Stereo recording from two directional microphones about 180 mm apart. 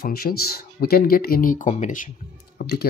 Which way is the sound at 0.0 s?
60° left (ahead or behind).